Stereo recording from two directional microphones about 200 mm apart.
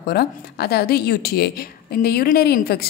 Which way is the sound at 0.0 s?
50° left (ahead or behind).